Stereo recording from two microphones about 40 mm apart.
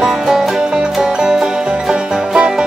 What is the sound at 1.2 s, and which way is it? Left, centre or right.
Music, centre.